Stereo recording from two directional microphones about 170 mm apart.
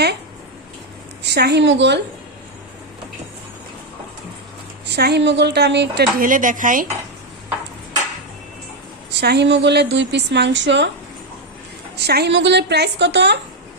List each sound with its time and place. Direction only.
1.2 s a woman's voice: 80° right
4.8 s a woman's voice: 75° right (ahead or behind)
6.2 s speech: 50° right (ahead or behind)
9.1 s a woman's voice: 80° right
12.0 s a woman's voice: 80° right